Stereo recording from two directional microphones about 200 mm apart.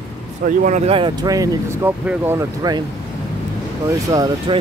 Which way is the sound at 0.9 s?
20° right (ahead or behind).